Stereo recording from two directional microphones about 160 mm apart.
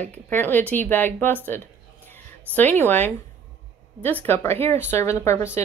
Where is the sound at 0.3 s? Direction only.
10° left (ahead or behind).